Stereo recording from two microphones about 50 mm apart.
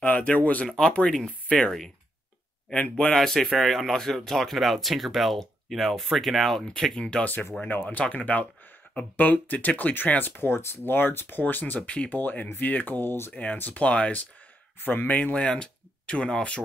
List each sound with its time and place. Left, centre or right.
0.0 s speech: left
0.7 s speech: centre
2.7 s speech: left
3.1 s speech: centre
7.0 s speech: centre
7.6 s speech: left
11.9 s speech: left
12.2 s speech: left
14.8 s speech: left; by 16.6 s centre